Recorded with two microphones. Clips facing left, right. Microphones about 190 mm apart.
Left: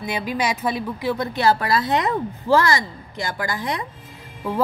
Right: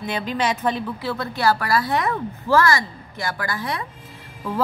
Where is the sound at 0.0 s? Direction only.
10° left (ahead or behind).